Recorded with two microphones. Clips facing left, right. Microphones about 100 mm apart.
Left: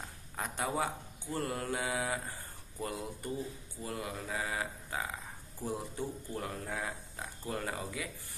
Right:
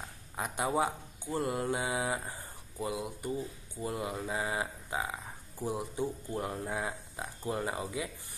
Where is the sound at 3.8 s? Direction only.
20° right (ahead or behind).